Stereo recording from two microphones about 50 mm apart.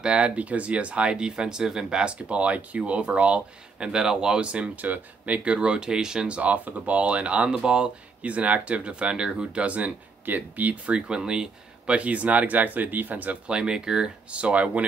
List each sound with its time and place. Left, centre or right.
0.0 s speech: right
3.9 s speech: centre; by 13.4 s right
13.5 s speech: centre
14.4 s speech: right